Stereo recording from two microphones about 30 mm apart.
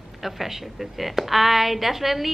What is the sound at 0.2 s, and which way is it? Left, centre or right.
A woman's voice, centre.